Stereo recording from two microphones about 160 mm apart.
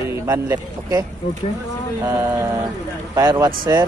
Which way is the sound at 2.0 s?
15° right (ahead or behind).